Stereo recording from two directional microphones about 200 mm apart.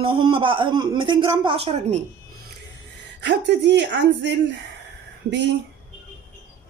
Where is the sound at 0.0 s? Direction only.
25° right (ahead or behind).